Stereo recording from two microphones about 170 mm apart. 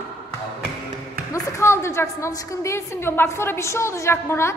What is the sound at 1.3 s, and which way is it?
A woman's voice, 15° left (ahead or behind).